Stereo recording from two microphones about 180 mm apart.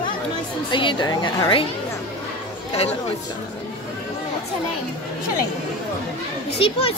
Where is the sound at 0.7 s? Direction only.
25° left (ahead or behind).